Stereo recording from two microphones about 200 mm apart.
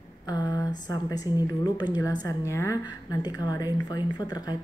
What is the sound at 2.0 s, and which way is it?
A woman's voice, 15° left (ahead or behind).